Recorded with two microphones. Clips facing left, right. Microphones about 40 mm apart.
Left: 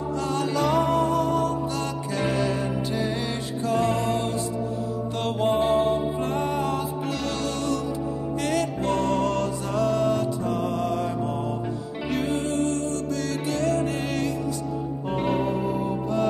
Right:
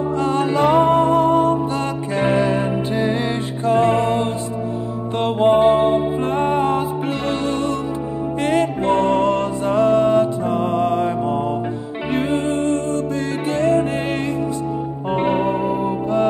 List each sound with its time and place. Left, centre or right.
0.2 s music: right
5.2 s music: right
8.4 s music: right
12.1 s music: right
15.1 s music: right